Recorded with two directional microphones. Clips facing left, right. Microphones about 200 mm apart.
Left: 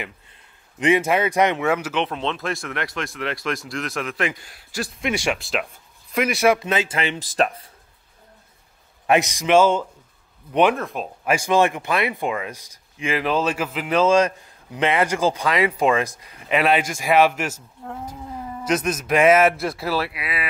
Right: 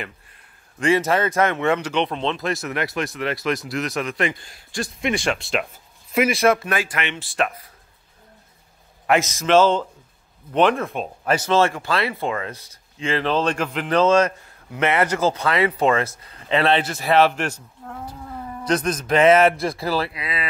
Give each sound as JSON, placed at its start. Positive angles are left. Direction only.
{"t": 0.7, "sound": "speech", "side_deg": 15}
{"t": 6.4, "sound": "speech", "side_deg": 15}
{"t": 9.0, "sound": "speech", "side_deg": 20}
{"t": 10.8, "sound": "speech", "side_deg": 0}